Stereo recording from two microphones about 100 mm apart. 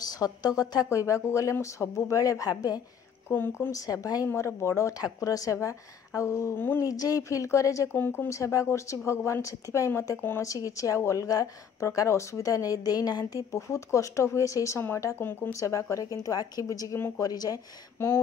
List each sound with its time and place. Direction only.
0.1 s a woman's voice: 40° left (ahead or behind)
3.3 s a woman's voice: 20° left (ahead or behind)
3.7 s a woman's voice: 35° left (ahead or behind)
4.3 s a woman's voice: 25° left (ahead or behind)
6.8 s a woman's voice: 35° left (ahead or behind)
17.9 s speech: 25° left (ahead or behind)